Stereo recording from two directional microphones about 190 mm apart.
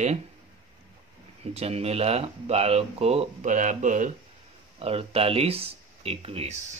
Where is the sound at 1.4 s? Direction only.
30° right (ahead or behind).